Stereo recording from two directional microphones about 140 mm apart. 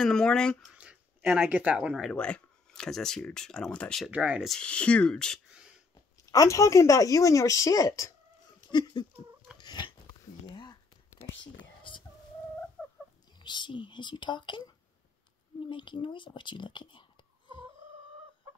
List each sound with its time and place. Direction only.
0.0 s speech: 5° left (ahead or behind)
0.7 s speech: 10° right (ahead or behind)
2.0 s speech: 5° left (ahead or behind)
4.1 s speech: 10° right (ahead or behind)
4.5 s speech: 5° left (ahead or behind)
6.3 s speech: 25° left (ahead or behind)
8.6 s a sound: 30° left (ahead or behind)
11.1 s whispering: 20° left (ahead or behind)
11.6 s whispering: 35° left (ahead or behind)
13.4 s speech: 35° left (ahead or behind)
15.7 s speech: 35° left (ahead or behind)